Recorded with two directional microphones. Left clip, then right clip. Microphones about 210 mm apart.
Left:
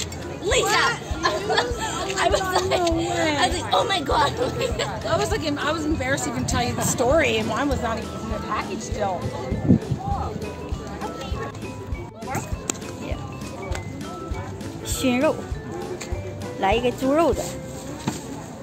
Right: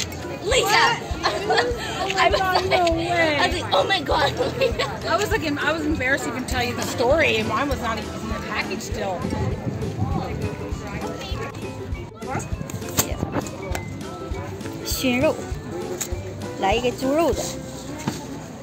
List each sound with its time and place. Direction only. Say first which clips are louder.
0.5 s a woman's voice: right 2 dB; 55° left (ahead or behind)
15.0 s speech: even; 5° left (ahead or behind)
16.6 s speech: even; 5° left (ahead or behind)